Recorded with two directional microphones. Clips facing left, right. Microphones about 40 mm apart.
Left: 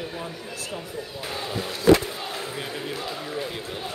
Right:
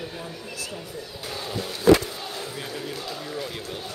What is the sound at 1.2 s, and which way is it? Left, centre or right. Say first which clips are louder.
Speech: left 1 dB; left.